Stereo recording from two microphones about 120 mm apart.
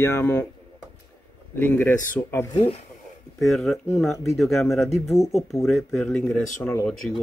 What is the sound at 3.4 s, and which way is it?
Speech, centre (ahead or behind).